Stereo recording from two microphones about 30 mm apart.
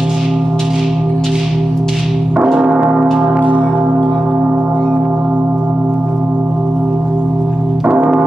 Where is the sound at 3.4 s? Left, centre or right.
Right.